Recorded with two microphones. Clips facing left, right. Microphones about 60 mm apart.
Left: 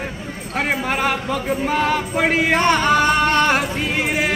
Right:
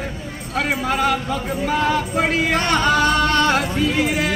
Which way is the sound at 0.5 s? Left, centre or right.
Left.